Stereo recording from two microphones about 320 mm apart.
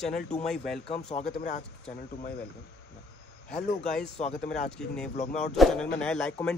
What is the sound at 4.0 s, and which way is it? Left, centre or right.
Speech, left.